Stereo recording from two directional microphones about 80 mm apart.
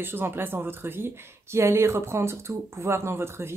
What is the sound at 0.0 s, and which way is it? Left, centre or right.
A woman's voice, right.